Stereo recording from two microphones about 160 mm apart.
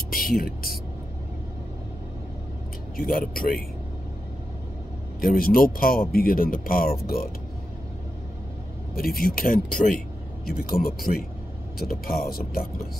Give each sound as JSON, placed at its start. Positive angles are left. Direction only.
{"t": 0.1, "sound": "music", "side_deg": 65}
{"t": 3.0, "sound": "speech", "side_deg": 65}
{"t": 5.2, "sound": "speech", "side_deg": 65}
{"t": 8.9, "sound": "speech", "side_deg": 65}